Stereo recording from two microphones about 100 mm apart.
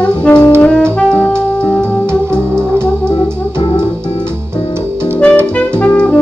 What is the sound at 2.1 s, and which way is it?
Organ, 25° right (ahead or behind).